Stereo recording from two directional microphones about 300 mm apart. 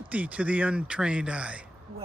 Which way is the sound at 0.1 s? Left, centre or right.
Centre.